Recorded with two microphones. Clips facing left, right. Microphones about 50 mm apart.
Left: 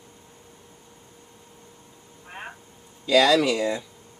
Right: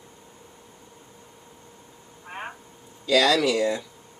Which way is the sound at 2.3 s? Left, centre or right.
Right.